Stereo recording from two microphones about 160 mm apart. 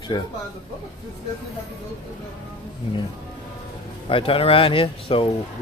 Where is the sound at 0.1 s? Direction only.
25° left (ahead or behind).